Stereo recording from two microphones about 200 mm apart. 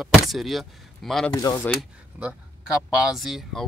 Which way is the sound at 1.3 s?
20° left (ahead or behind).